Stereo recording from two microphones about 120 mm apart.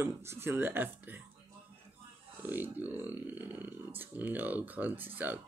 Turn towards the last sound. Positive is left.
turn(degrees=-15)  # may be behind; listen again after turning